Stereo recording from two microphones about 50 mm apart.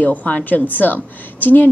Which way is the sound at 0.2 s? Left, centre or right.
Left.